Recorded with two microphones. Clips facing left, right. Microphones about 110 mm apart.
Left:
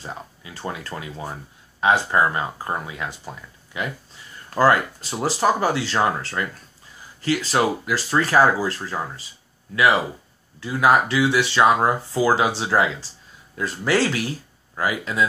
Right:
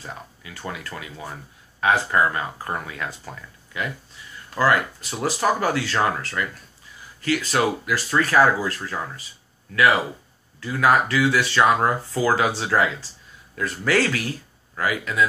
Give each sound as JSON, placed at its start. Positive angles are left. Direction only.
{"t": 0.0, "sound": "speech", "side_deg": 25}
{"t": 4.6, "sound": "speech", "side_deg": 30}
{"t": 10.6, "sound": "speech", "side_deg": 20}